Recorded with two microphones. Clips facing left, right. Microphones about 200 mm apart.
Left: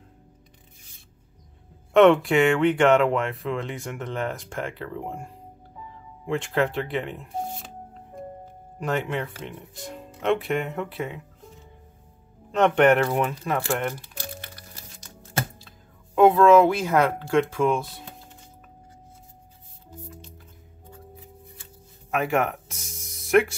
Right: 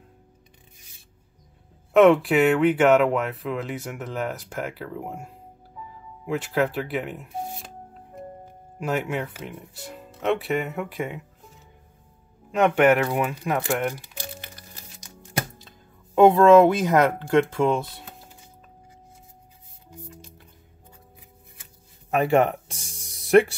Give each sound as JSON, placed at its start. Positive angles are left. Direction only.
{"t": 2.0, "sound": "speech", "side_deg": 0}
{"t": 8.7, "sound": "speech", "side_deg": -10}
{"t": 12.4, "sound": "speech", "side_deg": -10}
{"t": 13.7, "sound": "speech", "side_deg": 0}
{"t": 16.2, "sound": "speech", "side_deg": -20}
{"t": 22.1, "sound": "music", "side_deg": -30}